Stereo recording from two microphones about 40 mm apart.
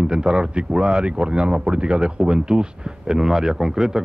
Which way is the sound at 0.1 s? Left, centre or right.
Right.